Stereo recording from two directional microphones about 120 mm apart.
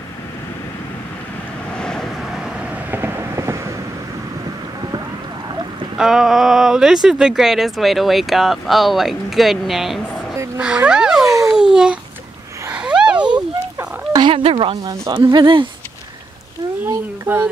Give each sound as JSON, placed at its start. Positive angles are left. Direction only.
{"t": 1.8, "sound": "vehicle", "side_deg": 5}
{"t": 5.9, "sound": "speech", "side_deg": -5}
{"t": 11.2, "sound": "a sound", "side_deg": -25}
{"t": 11.5, "sound": "speech", "side_deg": -5}
{"t": 12.6, "sound": "a sound", "side_deg": -10}
{"t": 14.3, "sound": "speech", "side_deg": -50}
{"t": 14.8, "sound": "speech", "side_deg": -30}
{"t": 16.8, "sound": "speech", "side_deg": -15}